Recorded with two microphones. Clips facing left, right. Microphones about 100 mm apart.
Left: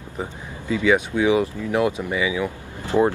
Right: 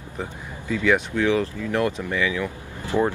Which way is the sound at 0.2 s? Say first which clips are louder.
Left 2 dB; 15° left (ahead or behind).